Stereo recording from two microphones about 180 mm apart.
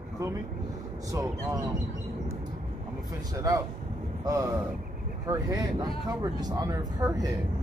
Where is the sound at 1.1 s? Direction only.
15° right (ahead or behind).